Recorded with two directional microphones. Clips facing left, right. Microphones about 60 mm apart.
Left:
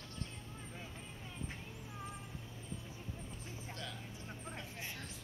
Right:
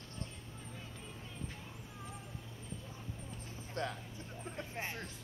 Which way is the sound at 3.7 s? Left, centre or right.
Right.